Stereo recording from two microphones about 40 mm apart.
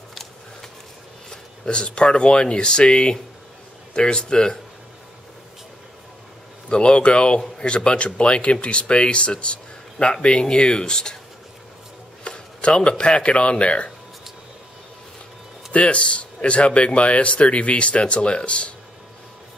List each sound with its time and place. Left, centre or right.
0.1 s a sound: centre
1.3 s speech: left
6.7 s speech: left
12.3 s speech: left
15.7 s speech: left